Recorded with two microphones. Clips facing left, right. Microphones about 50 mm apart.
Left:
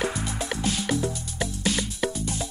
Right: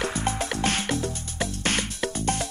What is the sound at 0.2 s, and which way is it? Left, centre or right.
Music, right.